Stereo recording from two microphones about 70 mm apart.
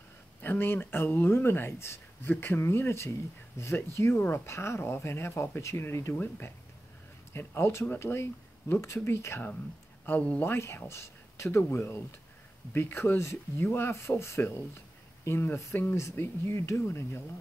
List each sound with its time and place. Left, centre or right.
0.4 s speech: left
6.1 s speech: left
10.0 s speech: centre
10.4 s speech: left